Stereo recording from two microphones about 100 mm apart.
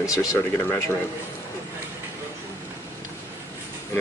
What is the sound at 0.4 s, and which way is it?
Speech, 20° left (ahead or behind).